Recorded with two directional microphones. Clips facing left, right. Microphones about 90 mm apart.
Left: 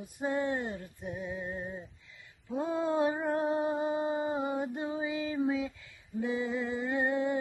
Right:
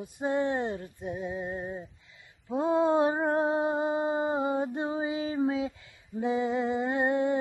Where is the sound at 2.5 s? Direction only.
20° right (ahead or behind).